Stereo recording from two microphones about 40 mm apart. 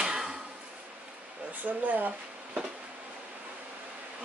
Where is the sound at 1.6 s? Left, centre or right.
Right.